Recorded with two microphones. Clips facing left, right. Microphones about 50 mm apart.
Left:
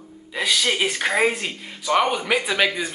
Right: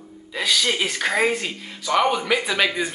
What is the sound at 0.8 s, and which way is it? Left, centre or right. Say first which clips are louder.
A man's voice: left 1 dB; centre.